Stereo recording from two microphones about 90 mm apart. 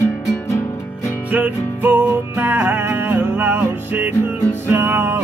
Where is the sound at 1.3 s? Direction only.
20° right (ahead or behind).